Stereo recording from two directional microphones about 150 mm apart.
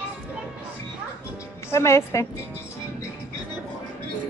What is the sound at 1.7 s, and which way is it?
Speech, 20° left (ahead or behind).